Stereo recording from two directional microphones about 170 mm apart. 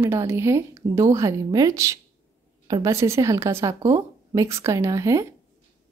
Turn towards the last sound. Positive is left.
turn(degrees=-20)  # may be behind; listen again after turning